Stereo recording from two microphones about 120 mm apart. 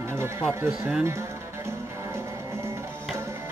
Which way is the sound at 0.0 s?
20° right (ahead or behind).